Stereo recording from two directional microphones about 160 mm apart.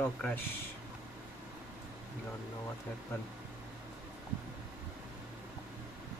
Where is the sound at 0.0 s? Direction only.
10° left (ahead or behind).